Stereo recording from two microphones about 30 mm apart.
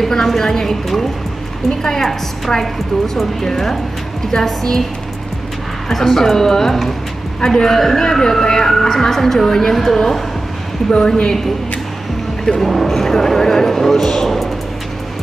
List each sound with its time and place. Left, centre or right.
0.0 s speech: centre
1.8 s speech: centre
5.9 s speech: centre
10.9 s a woman's voice: left
12.5 s speech: centre